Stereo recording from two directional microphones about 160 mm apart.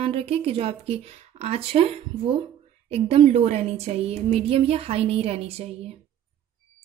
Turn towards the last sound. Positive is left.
turn(degrees=-40)  # may be behind; listen again after turning